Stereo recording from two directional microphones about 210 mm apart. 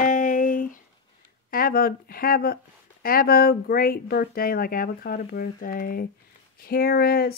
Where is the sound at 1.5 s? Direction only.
45° left (ahead or behind).